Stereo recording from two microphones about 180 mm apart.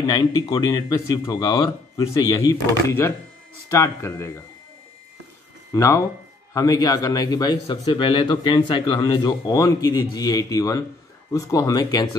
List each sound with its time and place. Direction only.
0.0 s a man's voice: 20° left (ahead or behind)
5.7 s a man's voice: 15° left (ahead or behind)